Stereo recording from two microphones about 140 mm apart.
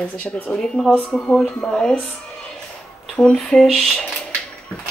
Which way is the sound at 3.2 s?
5° left (ahead or behind).